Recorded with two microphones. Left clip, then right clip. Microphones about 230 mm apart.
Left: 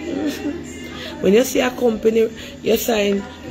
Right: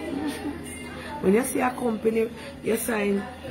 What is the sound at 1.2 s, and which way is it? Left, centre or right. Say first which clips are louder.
Speech: left 8 dB; centre.